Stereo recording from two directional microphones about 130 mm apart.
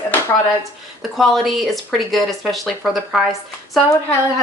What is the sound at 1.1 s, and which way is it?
Speech, centre (ahead or behind).